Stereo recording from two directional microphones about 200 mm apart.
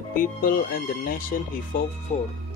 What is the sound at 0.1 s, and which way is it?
Speech, 45° left (ahead or behind).